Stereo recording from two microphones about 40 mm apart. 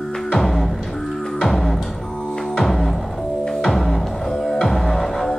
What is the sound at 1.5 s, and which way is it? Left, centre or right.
Music, centre.